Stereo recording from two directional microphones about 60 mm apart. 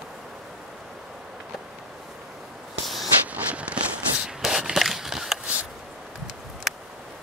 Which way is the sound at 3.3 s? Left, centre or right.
Right.